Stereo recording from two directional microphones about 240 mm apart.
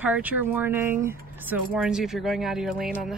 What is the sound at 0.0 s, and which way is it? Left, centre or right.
Speech, centre.